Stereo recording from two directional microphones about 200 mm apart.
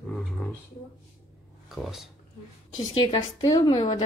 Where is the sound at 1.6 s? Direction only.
Centre (ahead or behind).